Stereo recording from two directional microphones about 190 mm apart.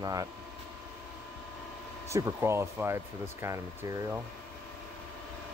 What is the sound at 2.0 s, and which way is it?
Speech, 15° right (ahead or behind).